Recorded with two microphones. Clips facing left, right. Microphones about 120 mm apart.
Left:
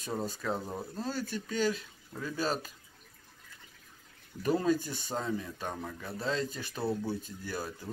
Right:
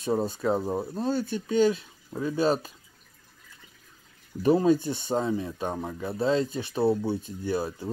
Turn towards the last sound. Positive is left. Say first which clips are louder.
# right 9 dB
turn(degrees=-25)  # may be behind; listen again after turning